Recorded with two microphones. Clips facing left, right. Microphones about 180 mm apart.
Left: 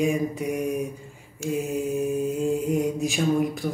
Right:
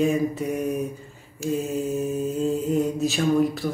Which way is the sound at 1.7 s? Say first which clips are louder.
Even; 15° left (ahead or behind).